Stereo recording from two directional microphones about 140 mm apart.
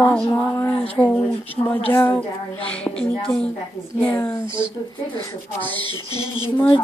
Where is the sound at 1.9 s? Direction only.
20° left (ahead or behind).